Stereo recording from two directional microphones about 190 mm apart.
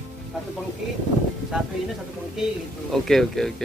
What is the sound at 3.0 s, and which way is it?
Speech, centre (ahead or behind).